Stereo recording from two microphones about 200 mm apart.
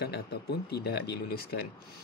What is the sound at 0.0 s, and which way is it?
Speech, 55° left (ahead or behind).